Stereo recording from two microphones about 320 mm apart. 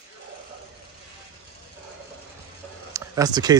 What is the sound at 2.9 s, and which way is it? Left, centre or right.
Speech, centre.